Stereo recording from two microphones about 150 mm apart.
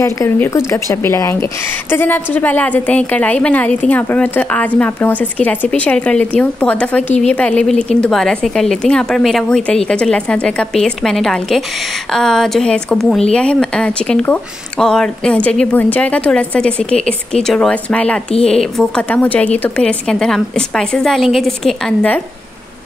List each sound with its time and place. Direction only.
0.0 s a woman's voice: 20° left (ahead or behind)